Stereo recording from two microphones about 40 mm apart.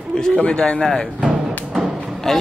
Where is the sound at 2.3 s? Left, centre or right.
Centre.